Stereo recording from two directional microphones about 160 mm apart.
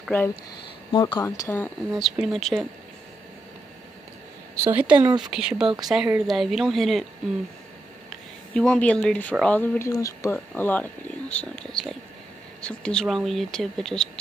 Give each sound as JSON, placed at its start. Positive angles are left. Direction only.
{"t": 0.9, "sound": "speech", "side_deg": 25}
{"t": 1.9, "sound": "speech", "side_deg": 0}
{"t": 4.6, "sound": "speech", "side_deg": -10}
{"t": 8.1, "sound": "speech", "side_deg": 5}
{"t": 9.8, "sound": "speech", "side_deg": 20}
{"t": 10.3, "sound": "speech", "side_deg": 10}